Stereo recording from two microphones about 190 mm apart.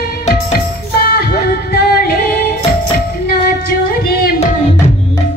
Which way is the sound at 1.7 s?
50° left (ahead or behind).